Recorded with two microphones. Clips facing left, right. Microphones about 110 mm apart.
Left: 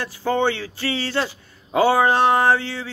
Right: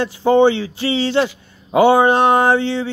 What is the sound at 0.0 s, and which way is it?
A man's voice, 20° right (ahead or behind).